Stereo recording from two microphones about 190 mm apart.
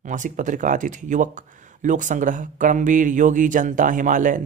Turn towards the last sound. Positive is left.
turn(degrees=-45)  # may be behind; listen again after turning